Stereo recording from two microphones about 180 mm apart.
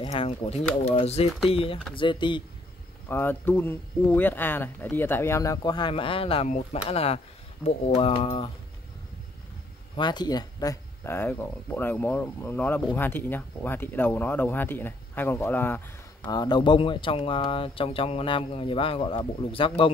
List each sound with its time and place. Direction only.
0.0 s speech: 35° left (ahead or behind)
3.1 s speech: 10° left (ahead or behind); by 8.3 s 30° left (ahead or behind)
9.9 s speech: 25° left (ahead or behind)
16.2 s speech: 25° left (ahead or behind)